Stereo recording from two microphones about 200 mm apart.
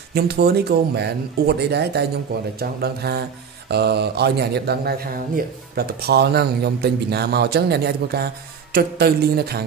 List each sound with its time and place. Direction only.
0.1 s speech: 55° right (ahead or behind)